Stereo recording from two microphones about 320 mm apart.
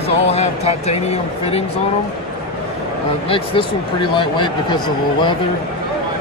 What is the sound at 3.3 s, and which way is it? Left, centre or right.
Speech, centre.